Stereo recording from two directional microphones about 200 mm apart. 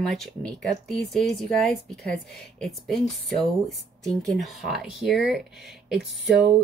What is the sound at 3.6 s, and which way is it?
Speech, centre (ahead or behind).